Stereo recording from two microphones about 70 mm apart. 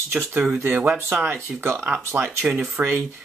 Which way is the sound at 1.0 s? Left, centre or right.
Right.